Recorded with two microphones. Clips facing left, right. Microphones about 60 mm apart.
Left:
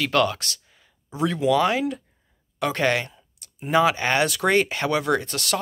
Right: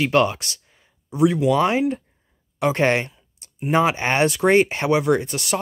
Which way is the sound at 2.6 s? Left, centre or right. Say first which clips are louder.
Right 3 dB; right.